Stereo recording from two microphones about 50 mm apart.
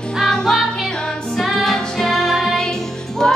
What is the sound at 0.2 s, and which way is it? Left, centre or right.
Music, centre.